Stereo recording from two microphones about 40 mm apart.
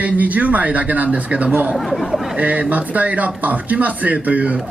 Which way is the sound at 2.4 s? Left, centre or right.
Right.